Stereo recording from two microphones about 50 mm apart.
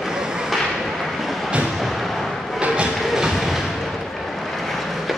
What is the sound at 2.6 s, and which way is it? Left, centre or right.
Train, right.